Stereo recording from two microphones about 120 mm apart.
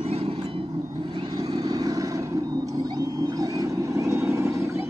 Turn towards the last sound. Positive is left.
turn(degrees=-20)  # may be behind; listen again after turning